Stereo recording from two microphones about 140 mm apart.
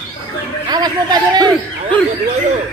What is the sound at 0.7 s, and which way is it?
Speech, 30° right (ahead or behind).